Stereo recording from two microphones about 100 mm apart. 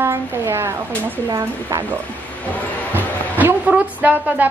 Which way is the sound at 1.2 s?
40° right (ahead or behind).